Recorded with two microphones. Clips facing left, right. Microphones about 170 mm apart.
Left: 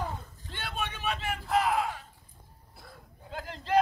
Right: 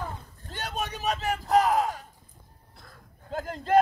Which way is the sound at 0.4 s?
40° right (ahead or behind).